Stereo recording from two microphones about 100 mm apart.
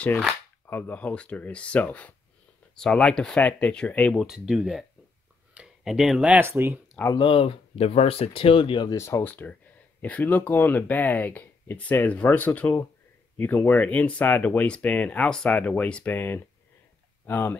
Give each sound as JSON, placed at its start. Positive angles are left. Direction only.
{"t": 0.7, "sound": "speech", "side_deg": 20}
{"t": 4.2, "sound": "speech", "side_deg": -5}
{"t": 6.4, "sound": "speech", "side_deg": -25}
{"t": 7.2, "sound": "speech", "side_deg": 60}
{"t": 8.8, "sound": "speech", "side_deg": 30}
{"t": 9.2, "sound": "speech", "side_deg": 15}